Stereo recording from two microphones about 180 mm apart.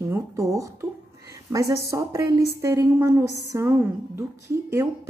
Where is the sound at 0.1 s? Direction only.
15° right (ahead or behind).